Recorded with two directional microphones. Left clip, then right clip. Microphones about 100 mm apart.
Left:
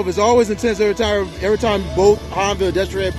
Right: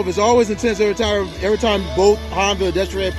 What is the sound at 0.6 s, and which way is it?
Speech, 5° right (ahead or behind).